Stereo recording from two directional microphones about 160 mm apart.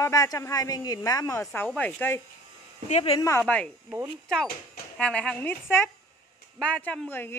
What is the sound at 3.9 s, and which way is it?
Speech, 15° right (ahead or behind).